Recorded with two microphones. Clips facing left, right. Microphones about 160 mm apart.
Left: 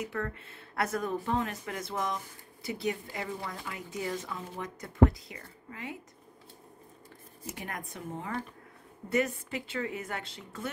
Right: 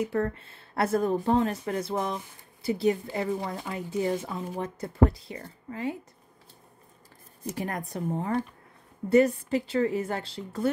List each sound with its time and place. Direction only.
0.0 s speech: 35° right (ahead or behind)
7.5 s speech: 35° right (ahead or behind)